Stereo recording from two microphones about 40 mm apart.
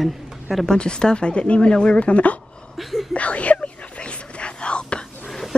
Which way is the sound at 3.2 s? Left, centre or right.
Left.